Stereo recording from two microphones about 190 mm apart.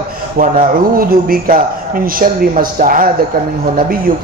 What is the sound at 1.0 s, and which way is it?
A man's voice, 50° right (ahead or behind).